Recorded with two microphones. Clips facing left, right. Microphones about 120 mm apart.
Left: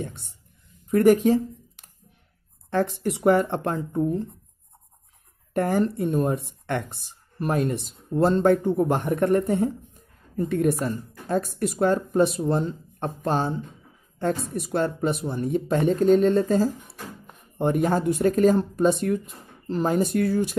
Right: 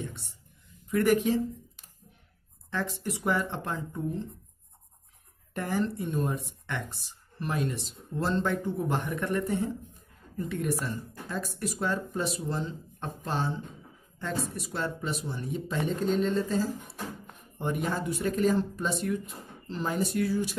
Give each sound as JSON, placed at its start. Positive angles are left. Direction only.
{"t": 0.8, "sound": "speech", "side_deg": 40}
{"t": 2.7, "sound": "speech", "side_deg": 50}
{"t": 5.5, "sound": "speech", "side_deg": 55}